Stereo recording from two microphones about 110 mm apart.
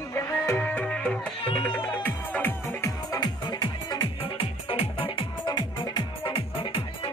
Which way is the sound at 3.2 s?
40° left (ahead or behind).